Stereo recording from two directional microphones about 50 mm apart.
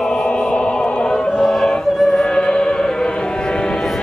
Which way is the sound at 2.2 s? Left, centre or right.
Centre.